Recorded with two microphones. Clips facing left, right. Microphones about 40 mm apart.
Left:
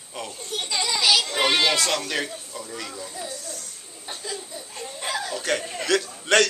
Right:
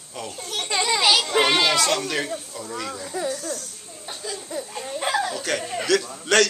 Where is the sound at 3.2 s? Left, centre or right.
Right.